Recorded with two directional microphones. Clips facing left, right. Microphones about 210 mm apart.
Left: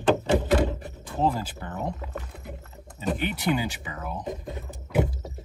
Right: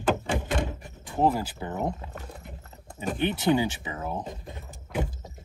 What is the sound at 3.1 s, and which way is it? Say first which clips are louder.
Speech: right 5 dB; 20° right (ahead or behind).